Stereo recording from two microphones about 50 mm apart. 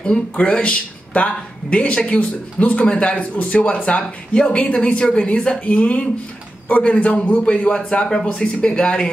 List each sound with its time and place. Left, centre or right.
0.4 s speech: left